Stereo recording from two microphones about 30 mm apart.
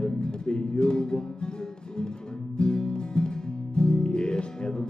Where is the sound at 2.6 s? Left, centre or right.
Left.